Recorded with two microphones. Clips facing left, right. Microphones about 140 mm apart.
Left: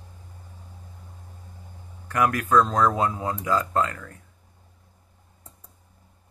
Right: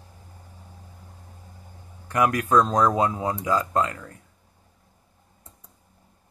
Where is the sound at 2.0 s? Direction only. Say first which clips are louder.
Right 1 dB; 20° right (ahead or behind).